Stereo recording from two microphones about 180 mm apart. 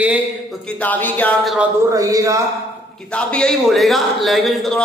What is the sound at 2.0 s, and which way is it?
Speech, 20° right (ahead or behind).